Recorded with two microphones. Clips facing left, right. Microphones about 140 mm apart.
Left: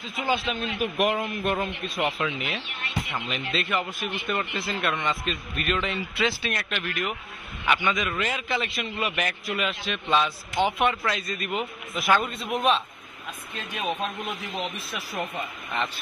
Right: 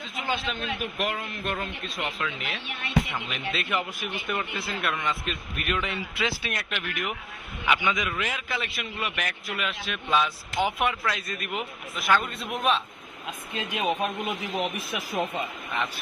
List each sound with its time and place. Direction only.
0.3 s a man's voice: 5° left (ahead or behind)
0.9 s a man's voice: 15° left (ahead or behind)
3.3 s a man's voice: 10° right (ahead or behind)
8.1 s a man's voice: centre (ahead or behind)
13.6 s a man's voice: 15° right (ahead or behind)